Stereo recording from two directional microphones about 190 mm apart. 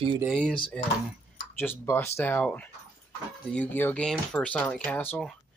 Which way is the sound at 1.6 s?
10° left (ahead or behind).